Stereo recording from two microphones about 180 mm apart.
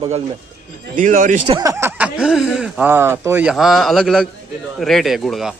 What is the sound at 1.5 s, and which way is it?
Speech, 20° right (ahead or behind).